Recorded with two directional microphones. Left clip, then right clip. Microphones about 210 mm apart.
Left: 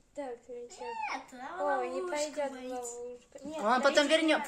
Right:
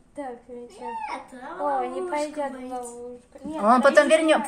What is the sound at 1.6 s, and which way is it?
A woman's voice, 30° left (ahead or behind).